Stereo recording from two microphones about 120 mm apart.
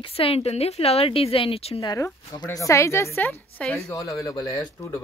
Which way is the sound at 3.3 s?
5° left (ahead or behind).